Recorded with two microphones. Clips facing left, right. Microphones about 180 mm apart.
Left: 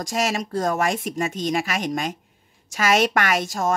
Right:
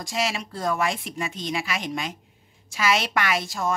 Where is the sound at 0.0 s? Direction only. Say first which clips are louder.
Left 4 dB; 45° left (ahead or behind).